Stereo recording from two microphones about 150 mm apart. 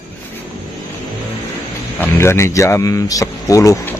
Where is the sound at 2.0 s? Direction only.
15° left (ahead or behind).